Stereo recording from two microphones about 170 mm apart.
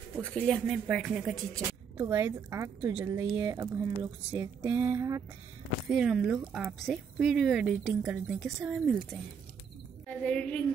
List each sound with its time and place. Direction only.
0.1 s speech: 5° left (ahead or behind)
1.5 s speech: 15° right (ahead or behind)
5.9 s a woman's voice: 5° right (ahead or behind)